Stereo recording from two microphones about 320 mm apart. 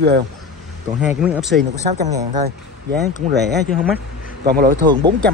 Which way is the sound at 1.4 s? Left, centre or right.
Right.